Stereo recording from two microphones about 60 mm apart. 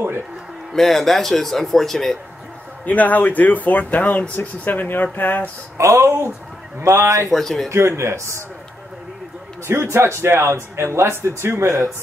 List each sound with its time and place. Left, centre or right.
0.7 s speech: centre
2.8 s speech: left
5.8 s a man's voice: right
7.2 s speech: centre
7.7 s speech: right
9.7 s speech: right